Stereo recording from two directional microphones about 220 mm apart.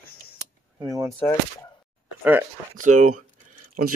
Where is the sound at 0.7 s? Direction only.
15° right (ahead or behind).